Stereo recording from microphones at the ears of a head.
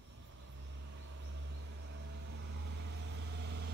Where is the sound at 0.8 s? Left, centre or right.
Right.